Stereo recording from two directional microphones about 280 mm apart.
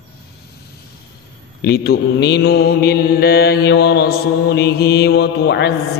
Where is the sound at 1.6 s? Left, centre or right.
Left.